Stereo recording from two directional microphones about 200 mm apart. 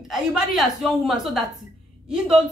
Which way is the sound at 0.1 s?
Centre (ahead or behind).